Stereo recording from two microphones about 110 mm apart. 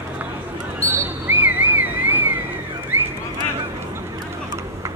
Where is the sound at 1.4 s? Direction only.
15° right (ahead or behind).